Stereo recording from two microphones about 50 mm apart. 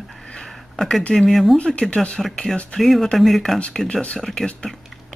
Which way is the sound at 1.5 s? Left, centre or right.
Left.